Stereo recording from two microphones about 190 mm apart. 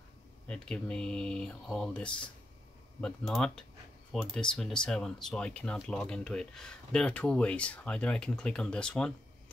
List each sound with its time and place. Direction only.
0.5 s speech: 5° left (ahead or behind)